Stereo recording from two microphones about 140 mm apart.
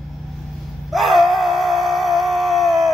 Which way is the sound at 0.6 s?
Centre (ahead or behind).